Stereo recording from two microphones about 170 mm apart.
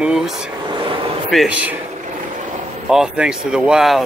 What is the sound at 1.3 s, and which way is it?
Speech, 5° right (ahead or behind).